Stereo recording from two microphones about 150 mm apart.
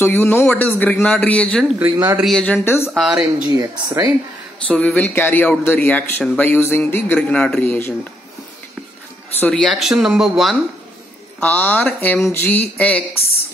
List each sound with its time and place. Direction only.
0.0 s speech: 15° left (ahead or behind)
2.9 s speech: 5° right (ahead or behind)
3.4 s speech: 25° right (ahead or behind)
4.6 s speech: 10° left (ahead or behind)
9.4 s speech: 5° left (ahead or behind)
11.4 s speech: 10° left (ahead or behind)